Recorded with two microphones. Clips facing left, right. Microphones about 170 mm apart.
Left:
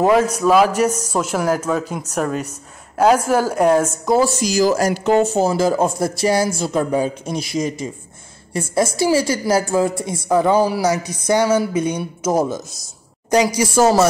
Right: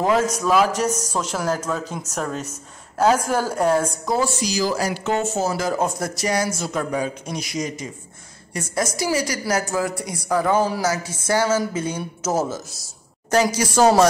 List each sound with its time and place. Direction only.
0.1 s speech: 10° left (ahead or behind)
4.0 s a woman's voice: 25° left (ahead or behind)
4.3 s a woman's voice: 45° left (ahead or behind); by 14.0 s 5° left (ahead or behind)